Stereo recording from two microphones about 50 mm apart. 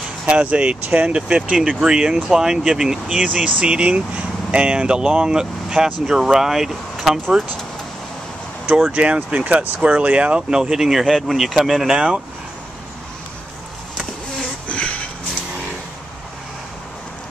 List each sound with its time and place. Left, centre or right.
0.3 s speech: right
3.3 s speech: right; by 7.2 s centre
8.8 s speech: right
10.6 s speech: centre
14.7 s a sound: left